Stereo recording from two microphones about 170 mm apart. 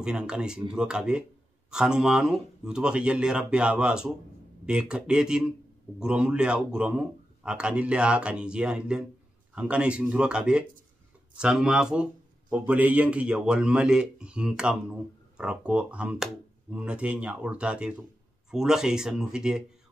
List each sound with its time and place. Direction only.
0.0 s speech: 5° right (ahead or behind)